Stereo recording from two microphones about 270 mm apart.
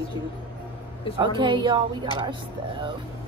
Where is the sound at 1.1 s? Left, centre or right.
Centre.